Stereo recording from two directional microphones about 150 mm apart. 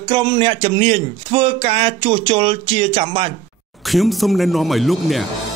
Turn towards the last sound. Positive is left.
turn(degrees=0)  # may be behind; listen again after turning